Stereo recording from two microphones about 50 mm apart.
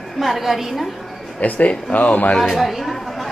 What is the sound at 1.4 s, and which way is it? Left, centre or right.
Speech, left.